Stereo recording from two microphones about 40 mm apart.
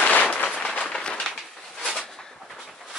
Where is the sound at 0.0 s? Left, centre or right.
Left.